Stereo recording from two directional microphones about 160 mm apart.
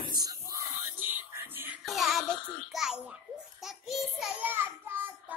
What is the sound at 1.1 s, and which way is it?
Music, 15° right (ahead or behind).